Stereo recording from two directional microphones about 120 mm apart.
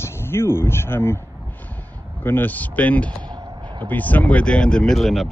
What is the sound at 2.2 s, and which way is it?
Speech, 15° left (ahead or behind).